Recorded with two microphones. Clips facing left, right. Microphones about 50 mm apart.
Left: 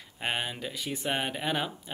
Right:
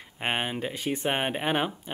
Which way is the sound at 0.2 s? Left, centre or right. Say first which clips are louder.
Right 3 dB; right.